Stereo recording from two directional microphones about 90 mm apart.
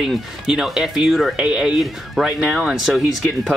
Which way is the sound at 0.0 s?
5° right (ahead or behind).